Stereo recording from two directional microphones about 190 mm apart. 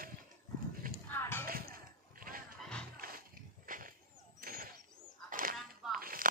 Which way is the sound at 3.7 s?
45° right (ahead or behind).